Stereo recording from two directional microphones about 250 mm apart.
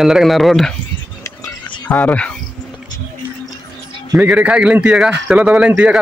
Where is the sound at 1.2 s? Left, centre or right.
Centre.